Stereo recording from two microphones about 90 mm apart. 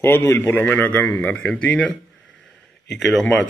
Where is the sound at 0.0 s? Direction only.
25° left (ahead or behind).